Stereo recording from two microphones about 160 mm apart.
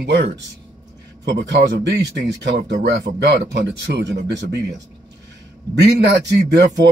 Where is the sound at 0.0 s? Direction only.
90° right.